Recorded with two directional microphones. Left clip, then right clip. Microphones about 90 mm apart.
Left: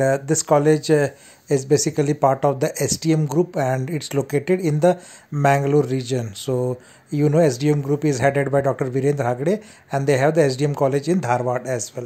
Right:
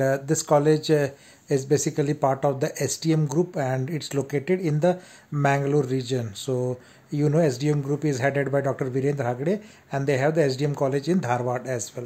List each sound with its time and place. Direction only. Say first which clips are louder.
0.0 s speech: left 4 dB; 30° left (ahead or behind)